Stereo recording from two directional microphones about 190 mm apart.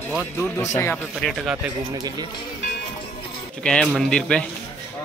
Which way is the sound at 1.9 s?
20° right (ahead or behind).